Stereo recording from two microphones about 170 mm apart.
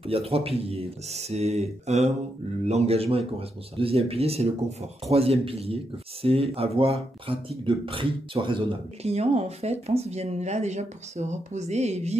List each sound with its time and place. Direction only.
0.0 s speech: 35° right (ahead or behind)